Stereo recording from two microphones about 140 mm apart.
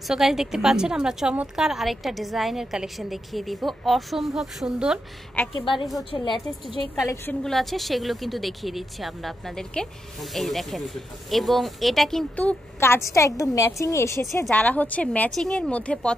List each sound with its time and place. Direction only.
0.1 s a woman's voice: 5° right (ahead or behind)
5.4 s speech: 15° left (ahead or behind)
6.1 s a woman's voice: 35° left (ahead or behind)
7.0 s a woman's voice: 20° left (ahead or behind)
7.4 s a woman's voice: centre (ahead or behind)